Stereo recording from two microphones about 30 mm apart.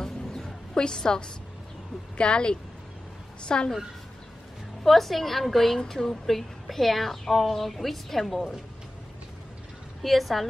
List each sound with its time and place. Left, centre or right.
0.0 s a sound: centre
0.7 s a woman's voice: left
4.8 s a woman's voice: centre
5.8 s a woman's voice: centre
10.0 s a woman's voice: centre